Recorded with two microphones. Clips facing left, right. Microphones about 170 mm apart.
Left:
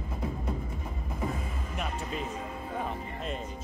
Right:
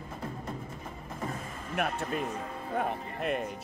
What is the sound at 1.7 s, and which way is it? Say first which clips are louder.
Speech: right 5 dB; 60° right (ahead or behind).